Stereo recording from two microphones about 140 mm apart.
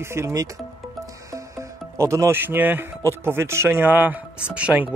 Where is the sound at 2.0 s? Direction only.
20° right (ahead or behind).